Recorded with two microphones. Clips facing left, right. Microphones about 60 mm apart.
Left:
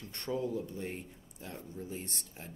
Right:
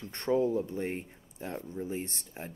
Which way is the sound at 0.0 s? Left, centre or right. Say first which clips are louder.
Right 8 dB; right.